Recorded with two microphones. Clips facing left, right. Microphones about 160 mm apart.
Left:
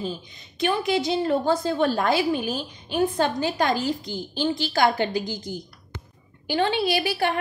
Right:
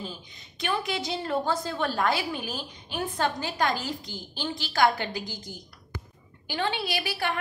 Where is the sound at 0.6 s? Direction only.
25° left (ahead or behind).